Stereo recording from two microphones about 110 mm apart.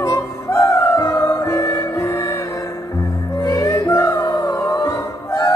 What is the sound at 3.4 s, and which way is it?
Music, 30° left (ahead or behind).